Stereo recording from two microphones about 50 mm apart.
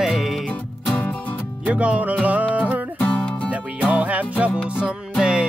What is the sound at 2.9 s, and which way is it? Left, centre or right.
Music, left.